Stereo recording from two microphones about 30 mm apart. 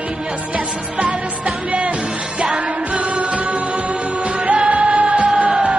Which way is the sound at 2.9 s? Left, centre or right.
Right.